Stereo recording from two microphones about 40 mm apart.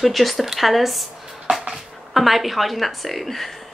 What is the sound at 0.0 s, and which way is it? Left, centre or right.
A woman's voice, centre.